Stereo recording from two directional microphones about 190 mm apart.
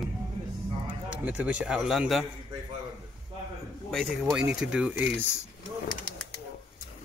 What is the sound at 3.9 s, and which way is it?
A man's voice, centre (ahead or behind).